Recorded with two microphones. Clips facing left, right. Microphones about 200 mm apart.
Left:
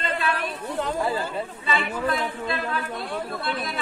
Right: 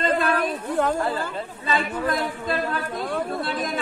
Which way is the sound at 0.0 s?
45° right (ahead or behind).